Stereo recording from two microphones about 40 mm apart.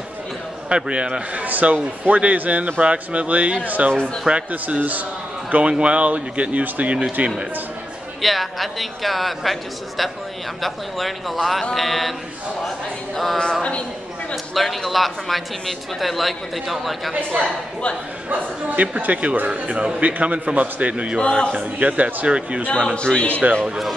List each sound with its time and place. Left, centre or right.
0.7 s a man's voice: right
1.3 s a man's voice: right
3.9 s a woman's voice: left
4.5 s speech: right
5.5 s a man's voice: right
8.2 s a man's voice: centre
13.4 s a woman's voice: left
14.3 s a man's voice: centre
18.3 s a man's voice: right
21.2 s a woman's voice: left
21.5 s a man's voice: right
22.9 s a woman's voice: left
23.4 s a man's voice: right